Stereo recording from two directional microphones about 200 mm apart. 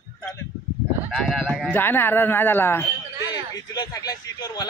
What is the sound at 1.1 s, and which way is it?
Speech, centre (ahead or behind).